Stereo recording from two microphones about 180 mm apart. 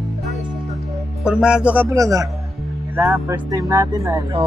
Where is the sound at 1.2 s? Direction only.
5° right (ahead or behind).